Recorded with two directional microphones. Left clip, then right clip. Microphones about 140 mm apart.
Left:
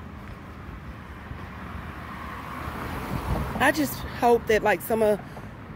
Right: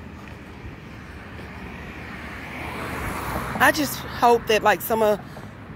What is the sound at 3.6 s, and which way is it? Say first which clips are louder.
Speech: right 4 dB; 15° left (ahead or behind).